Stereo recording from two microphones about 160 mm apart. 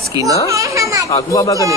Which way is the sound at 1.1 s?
20° left (ahead or behind).